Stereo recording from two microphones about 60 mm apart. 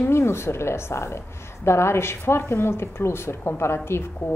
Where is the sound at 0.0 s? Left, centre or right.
Left.